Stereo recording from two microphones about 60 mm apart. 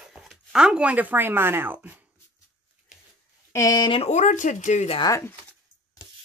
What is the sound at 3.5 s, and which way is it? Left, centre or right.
Speech, left.